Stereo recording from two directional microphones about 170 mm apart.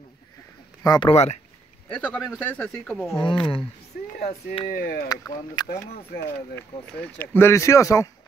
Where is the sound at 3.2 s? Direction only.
30° left (ahead or behind).